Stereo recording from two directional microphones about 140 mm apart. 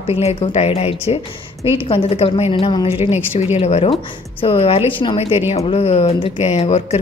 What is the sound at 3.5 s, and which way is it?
A woman's voice, 50° left (ahead or behind).